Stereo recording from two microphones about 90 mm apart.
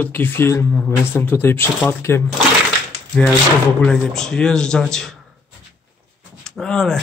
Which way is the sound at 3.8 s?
10° left (ahead or behind).